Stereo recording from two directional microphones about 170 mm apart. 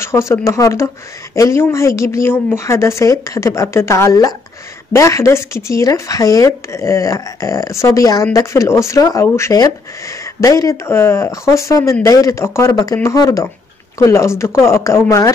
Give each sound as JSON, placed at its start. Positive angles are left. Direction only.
{"t": 0.0, "sound": "speech", "side_deg": 15}